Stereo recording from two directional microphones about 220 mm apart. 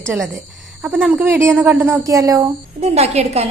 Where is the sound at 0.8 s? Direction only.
5° right (ahead or behind).